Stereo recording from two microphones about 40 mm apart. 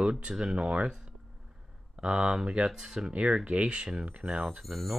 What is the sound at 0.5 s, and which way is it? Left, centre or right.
Speech, right.